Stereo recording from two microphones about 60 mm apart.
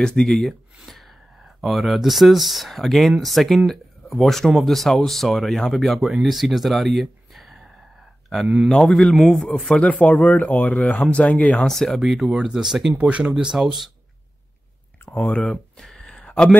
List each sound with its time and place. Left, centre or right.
0.0 s speech: centre
9.8 s speech: left; by 12.9 s centre
13.0 s speech: right
13.6 s speech: centre
15.0 s speech: left
15.5 s a sound: centre